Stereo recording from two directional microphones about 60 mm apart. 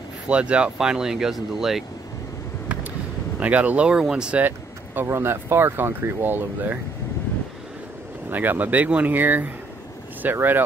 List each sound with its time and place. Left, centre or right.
0.3 s speech: centre
3.3 s speech: right
4.4 s speech: right
8.3 s speech: right